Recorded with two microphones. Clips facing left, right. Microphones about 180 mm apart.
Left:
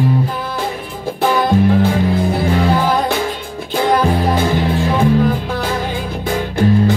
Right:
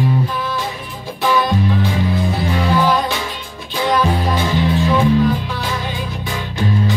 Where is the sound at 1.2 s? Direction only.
50° left (ahead or behind).